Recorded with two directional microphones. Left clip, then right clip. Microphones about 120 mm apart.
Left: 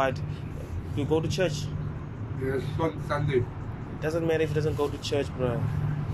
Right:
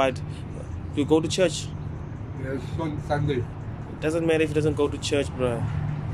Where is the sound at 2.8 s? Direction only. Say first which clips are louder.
Right 1 dB; 25° right (ahead or behind).